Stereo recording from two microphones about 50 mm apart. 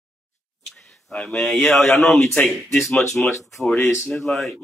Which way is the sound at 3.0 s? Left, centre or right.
Left.